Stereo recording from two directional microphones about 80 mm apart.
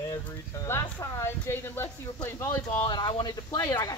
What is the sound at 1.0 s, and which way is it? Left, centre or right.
Speech, left.